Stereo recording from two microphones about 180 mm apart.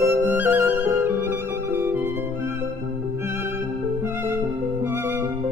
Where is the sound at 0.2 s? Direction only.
10° right (ahead or behind).